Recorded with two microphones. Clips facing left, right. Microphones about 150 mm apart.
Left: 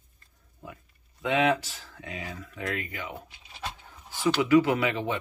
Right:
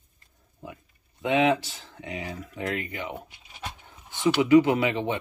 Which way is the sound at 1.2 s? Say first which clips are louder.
Right 2 dB; 25° right (ahead or behind).